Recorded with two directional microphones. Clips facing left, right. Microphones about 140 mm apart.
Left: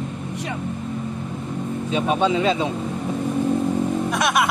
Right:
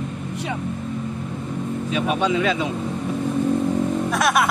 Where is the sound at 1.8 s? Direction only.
30° left (ahead or behind).